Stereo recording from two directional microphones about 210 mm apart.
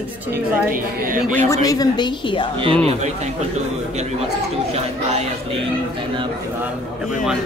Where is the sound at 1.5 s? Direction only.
15° left (ahead or behind).